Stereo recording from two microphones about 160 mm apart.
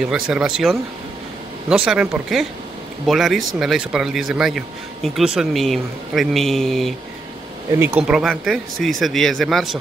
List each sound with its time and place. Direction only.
0.0 s speech: 5° right (ahead or behind)